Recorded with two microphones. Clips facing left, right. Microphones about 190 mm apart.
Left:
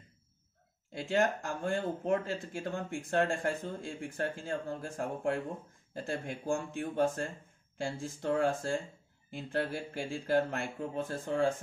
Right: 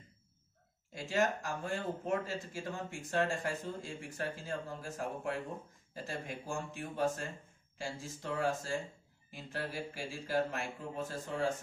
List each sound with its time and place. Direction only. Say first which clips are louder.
0.9 s speech: left 3 dB; 60° left (ahead or behind)